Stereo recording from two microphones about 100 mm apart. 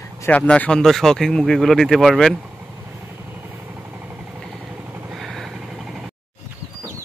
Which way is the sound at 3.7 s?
20° right (ahead or behind).